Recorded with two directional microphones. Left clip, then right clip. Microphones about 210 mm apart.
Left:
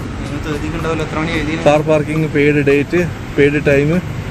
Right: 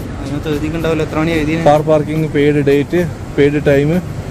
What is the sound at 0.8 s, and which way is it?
Speech, 40° right (ahead or behind).